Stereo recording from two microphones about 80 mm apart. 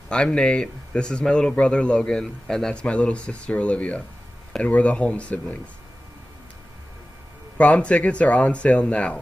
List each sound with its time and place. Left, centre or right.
0.1 s a man's voice: centre
7.5 s a man's voice: centre